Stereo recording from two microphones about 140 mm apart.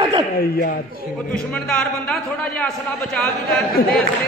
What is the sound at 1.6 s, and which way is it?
A man's voice, 5° left (ahead or behind).